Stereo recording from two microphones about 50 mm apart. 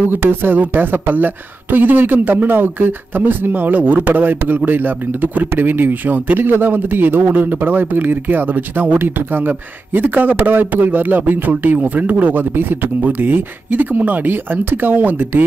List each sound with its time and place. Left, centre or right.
0.1 s a man's voice: right